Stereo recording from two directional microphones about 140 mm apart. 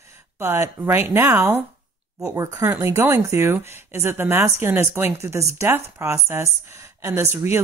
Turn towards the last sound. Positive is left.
turn(degrees=-20)  # may be behind; listen again after turning